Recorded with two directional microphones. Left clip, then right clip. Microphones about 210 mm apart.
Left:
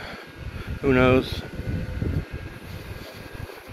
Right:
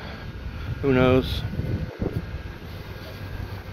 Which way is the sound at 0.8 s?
5° left (ahead or behind).